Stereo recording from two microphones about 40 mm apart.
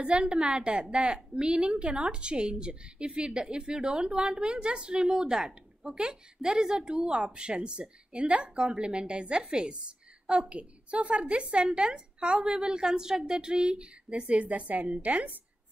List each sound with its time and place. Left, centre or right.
0.0 s a woman's voice: right